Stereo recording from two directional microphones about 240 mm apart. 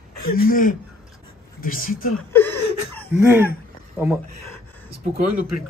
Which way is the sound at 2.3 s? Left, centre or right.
Centre.